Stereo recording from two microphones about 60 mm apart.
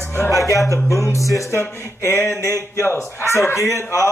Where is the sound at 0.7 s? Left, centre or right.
Left.